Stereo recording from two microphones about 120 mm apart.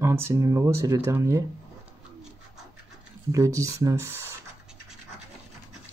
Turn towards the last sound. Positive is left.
turn(degrees=-20)  # may be behind; listen again after turning